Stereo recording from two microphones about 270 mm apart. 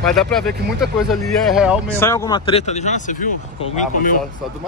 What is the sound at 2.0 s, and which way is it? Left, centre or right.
Speech, centre.